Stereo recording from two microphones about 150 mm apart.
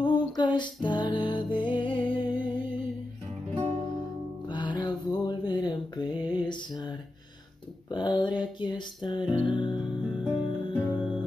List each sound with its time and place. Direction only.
0.0 s music: 30° left (ahead or behind)
4.5 s mantra: 30° left (ahead or behind)
7.9 s a sound: 30° left (ahead or behind)
10.1 s music: 5° right (ahead or behind)